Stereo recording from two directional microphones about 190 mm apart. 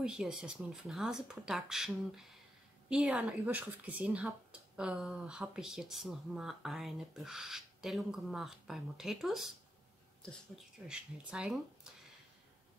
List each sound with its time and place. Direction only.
0.0 s speech: 5° right (ahead or behind)